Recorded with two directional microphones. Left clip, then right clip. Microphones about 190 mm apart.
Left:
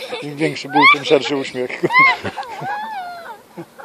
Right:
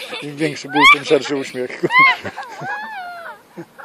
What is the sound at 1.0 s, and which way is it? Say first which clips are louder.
Speech: left 1 dB; 50° right (ahead or behind).